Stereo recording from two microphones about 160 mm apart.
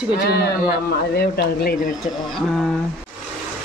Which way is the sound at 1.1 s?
85° left.